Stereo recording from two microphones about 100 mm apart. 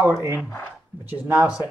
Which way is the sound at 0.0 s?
25° right (ahead or behind).